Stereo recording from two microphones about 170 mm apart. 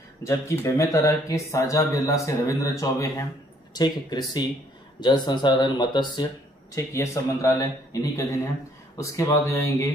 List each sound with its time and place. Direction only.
0.2 s speech: 15° left (ahead or behind)